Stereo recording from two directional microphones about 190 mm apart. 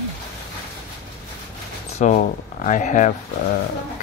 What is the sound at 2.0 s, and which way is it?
Speech, 40° left (ahead or behind).